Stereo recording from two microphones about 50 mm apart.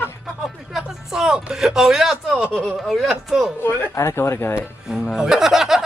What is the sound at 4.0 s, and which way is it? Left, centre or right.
Speech, left.